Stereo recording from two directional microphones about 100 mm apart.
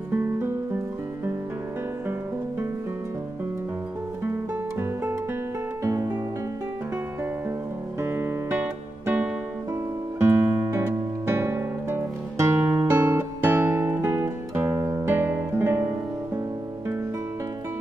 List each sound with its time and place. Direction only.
0.1 s music: 20° right (ahead or behind)
4.2 s music: 20° right (ahead or behind)
5.9 s music: 30° right (ahead or behind)
8.0 s music: 25° right (ahead or behind)